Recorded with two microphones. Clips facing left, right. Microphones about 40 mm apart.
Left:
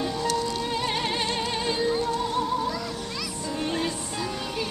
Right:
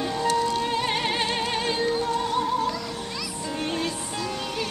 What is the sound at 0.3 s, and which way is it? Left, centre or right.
Music, right.